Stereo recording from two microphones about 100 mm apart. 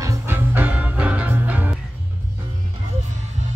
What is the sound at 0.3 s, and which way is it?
Music, 20° right (ahead or behind).